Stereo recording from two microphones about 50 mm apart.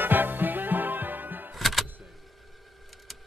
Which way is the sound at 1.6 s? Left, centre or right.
Centre.